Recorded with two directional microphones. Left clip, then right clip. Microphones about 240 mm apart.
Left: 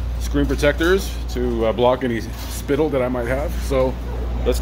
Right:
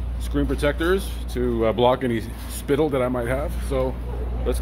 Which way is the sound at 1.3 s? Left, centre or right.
Centre.